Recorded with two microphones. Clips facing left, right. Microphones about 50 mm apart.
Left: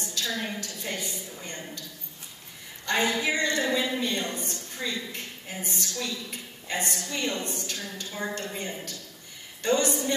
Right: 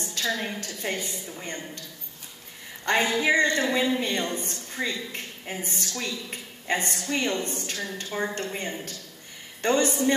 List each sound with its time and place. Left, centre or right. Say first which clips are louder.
0.0 s a woman's voice: right 3 dB; right
2.8 s a woman's voice: right 3 dB; right